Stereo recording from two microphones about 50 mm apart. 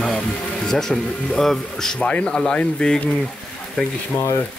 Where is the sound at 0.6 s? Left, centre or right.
Centre.